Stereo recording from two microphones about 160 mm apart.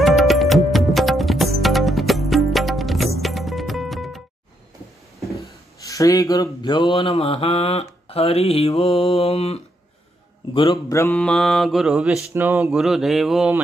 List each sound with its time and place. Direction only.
0.0 s music: centre (ahead or behind)
5.3 s speech: 20° left (ahead or behind); by 7.8 s 40° left (ahead or behind)
8.1 s mantra: 40° left (ahead or behind)
10.9 s mantra: 20° left (ahead or behind)
11.1 s speech: 5° left (ahead or behind)